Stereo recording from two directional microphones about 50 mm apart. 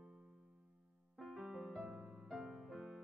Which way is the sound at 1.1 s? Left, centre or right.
Centre.